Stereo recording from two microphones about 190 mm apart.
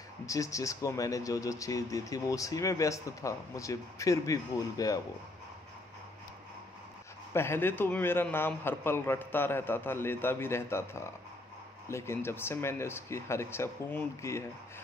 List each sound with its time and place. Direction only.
0.3 s speech: 15° left (ahead or behind)
7.3 s speech: 15° left (ahead or behind)